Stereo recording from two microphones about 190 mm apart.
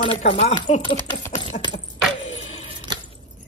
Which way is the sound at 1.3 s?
30° left (ahead or behind).